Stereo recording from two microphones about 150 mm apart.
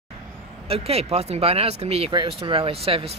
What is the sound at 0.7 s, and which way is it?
Speech, 40° right (ahead or behind).